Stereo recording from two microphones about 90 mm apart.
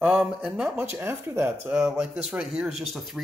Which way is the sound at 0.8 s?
25° right (ahead or behind).